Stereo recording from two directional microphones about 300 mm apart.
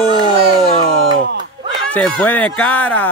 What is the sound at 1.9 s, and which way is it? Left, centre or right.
Speech, centre.